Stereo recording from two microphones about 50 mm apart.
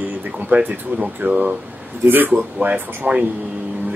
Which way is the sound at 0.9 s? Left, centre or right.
Right.